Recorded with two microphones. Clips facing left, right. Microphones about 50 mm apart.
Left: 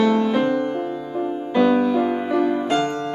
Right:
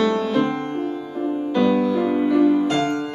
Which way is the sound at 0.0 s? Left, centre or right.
Centre.